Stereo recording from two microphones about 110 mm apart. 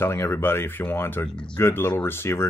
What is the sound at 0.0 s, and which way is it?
Speech, 25° left (ahead or behind).